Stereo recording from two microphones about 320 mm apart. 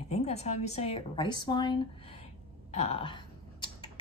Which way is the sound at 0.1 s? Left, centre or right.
Centre.